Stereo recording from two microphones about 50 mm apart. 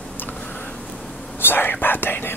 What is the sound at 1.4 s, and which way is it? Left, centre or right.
Whispering, left.